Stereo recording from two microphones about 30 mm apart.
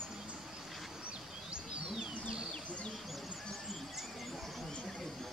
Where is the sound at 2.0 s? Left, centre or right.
Right.